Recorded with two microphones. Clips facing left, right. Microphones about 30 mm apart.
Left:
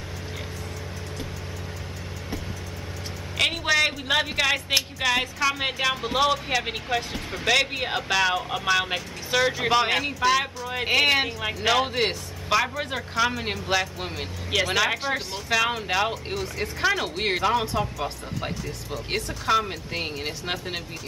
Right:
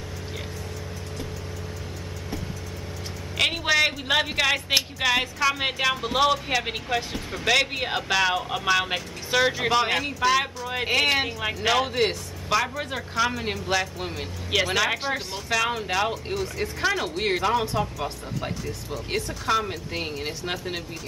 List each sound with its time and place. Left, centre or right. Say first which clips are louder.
3.3 s speech: even; centre